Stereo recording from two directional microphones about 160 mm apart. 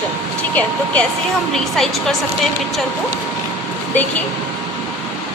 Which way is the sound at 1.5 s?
5° left (ahead or behind).